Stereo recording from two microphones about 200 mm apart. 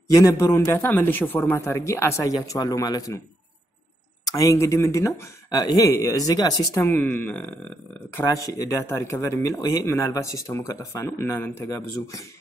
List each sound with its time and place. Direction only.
0.1 s speech: 15° left (ahead or behind)
4.3 s speech: 15° left (ahead or behind)